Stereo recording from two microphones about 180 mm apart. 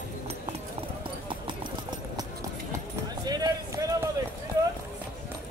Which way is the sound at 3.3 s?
20° right (ahead or behind).